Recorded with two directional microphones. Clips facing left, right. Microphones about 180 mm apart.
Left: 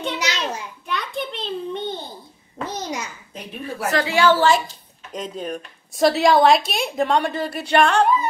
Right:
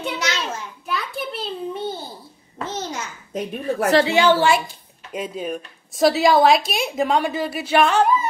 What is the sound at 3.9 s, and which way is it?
Speech, 25° right (ahead or behind).